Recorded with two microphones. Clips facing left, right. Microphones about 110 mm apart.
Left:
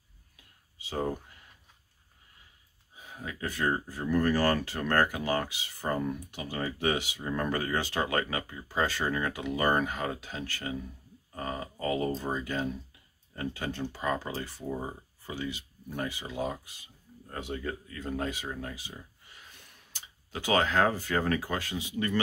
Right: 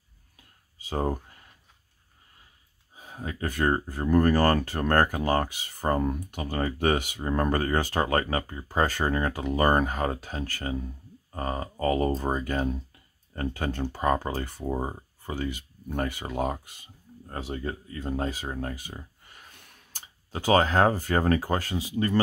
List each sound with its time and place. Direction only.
0.7 s speech: 45° right (ahead or behind)
3.0 s speech: 40° right (ahead or behind)
17.3 s speech: 35° right (ahead or behind)